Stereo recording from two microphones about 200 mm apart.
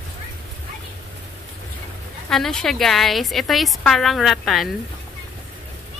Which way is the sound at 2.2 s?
5° left (ahead or behind).